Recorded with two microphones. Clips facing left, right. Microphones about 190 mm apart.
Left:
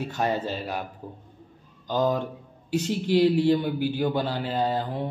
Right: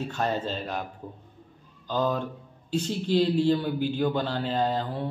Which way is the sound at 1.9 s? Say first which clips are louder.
Left 2 dB; 15° left (ahead or behind).